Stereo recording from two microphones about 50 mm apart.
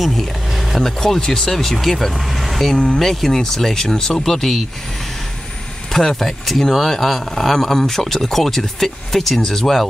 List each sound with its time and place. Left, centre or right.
0.0 s speech: centre
2.7 s speech: centre
3.0 s speech: centre
5.9 s speech: centre